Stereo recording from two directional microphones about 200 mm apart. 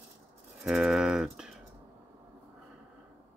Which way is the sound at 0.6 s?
5° right (ahead or behind).